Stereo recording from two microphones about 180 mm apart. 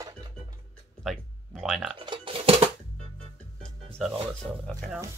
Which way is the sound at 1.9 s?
30° right (ahead or behind).